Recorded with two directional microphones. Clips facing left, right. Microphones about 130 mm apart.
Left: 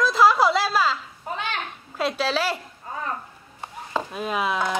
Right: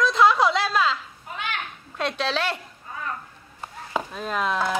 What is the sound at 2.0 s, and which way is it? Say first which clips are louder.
Speech: left 2 dB; 5° left (ahead or behind).